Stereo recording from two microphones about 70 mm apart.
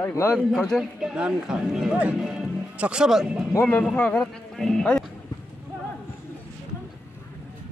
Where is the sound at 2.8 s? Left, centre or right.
Centre.